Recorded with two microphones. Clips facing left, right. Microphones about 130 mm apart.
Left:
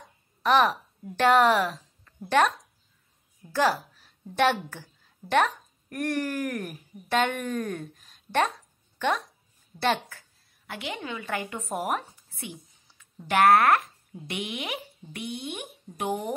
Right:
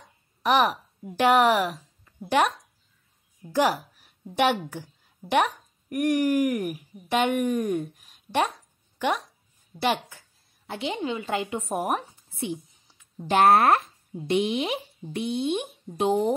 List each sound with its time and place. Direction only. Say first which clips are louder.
0.4 s a woman's voice: even; 15° right (ahead or behind)
3.5 s a woman's voice: right 2 dB; 15° right (ahead or behind)